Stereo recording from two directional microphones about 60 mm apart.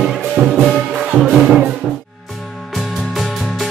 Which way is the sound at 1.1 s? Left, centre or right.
Centre.